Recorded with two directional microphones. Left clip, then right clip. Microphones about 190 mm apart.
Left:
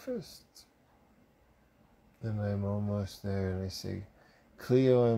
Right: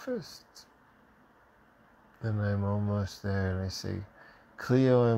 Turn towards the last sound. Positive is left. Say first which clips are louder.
# right 1 dB
turn(degrees=-20)  # may be behind; listen again after turning